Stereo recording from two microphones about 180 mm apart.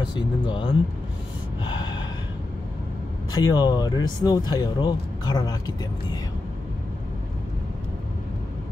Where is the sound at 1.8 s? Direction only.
90° left.